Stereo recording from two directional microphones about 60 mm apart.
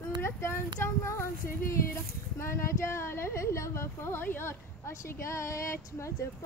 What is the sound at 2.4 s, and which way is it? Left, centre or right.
Speech, left.